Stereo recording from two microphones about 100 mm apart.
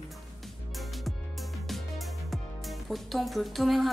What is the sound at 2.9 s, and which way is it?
A woman's voice, centre (ahead or behind).